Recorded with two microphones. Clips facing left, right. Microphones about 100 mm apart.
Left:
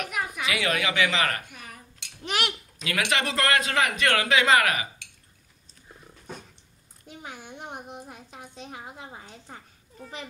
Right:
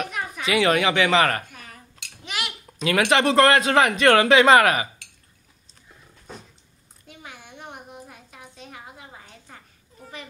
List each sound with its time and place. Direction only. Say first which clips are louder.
0.1 s a sound: even; 5° left (ahead or behind)
0.5 s a man's voice: right 9 dB; 35° right (ahead or behind)
1.5 s cutlery: even; 5° left (ahead or behind)
2.2 s dishes: left 3 dB; 50° left (ahead or behind)
2.8 s a man's voice: right 8 dB; 35° right (ahead or behind)
8.1 s a sound: left 2 dB; 30° left (ahead or behind)